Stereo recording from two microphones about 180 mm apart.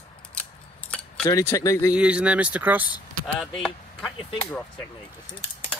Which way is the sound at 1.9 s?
5° right (ahead or behind).